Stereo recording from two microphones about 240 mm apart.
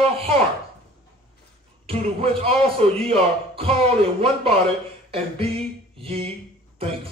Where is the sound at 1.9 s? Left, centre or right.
Right.